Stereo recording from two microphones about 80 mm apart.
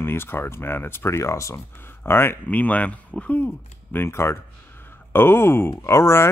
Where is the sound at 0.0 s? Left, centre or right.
Left.